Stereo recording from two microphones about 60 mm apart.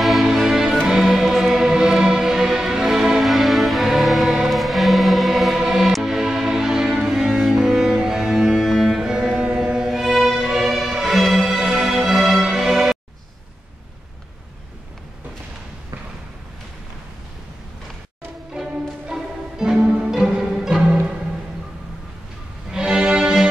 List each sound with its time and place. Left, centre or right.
0.0 s music: centre
18.5 s music: centre
20.1 s music: centre
22.7 s music: centre